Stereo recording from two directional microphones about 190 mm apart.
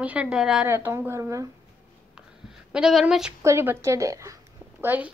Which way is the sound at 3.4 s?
15° right (ahead or behind).